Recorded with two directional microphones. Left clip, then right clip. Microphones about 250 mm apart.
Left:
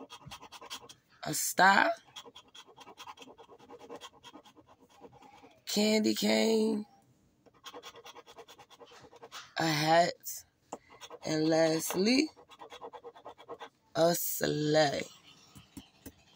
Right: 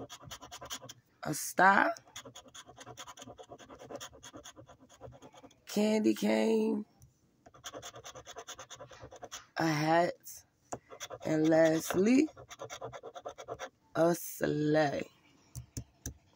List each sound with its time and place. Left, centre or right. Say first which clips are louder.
1.2 s speech: left 1 dB; centre
5.7 s speech: left 1 dB; centre
9.6 s speech: left 2 dB; centre
11.2 s speech: right 1 dB; centre
13.9 s speech: left 1 dB; centre